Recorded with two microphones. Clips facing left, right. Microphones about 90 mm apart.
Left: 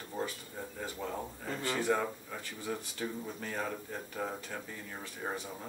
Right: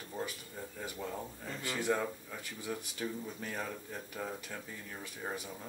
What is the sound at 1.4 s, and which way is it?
Speech, 35° left (ahead or behind).